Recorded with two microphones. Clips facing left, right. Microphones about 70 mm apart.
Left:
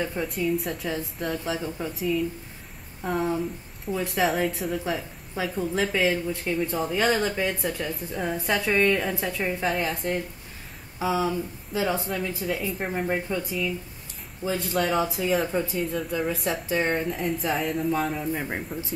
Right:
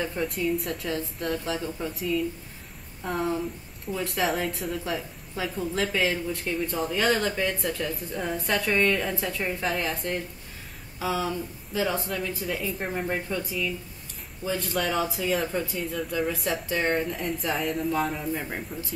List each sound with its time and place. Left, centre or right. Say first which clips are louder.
0.0 s speech: left 1 dB; centre
1.4 s speech: left 1 dB; centre
1.8 s speech: left 2 dB; centre
12.1 s speech: left 2 dB; centre